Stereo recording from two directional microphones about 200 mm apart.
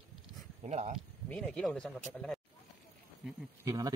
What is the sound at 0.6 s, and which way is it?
Speech, 35° right (ahead or behind).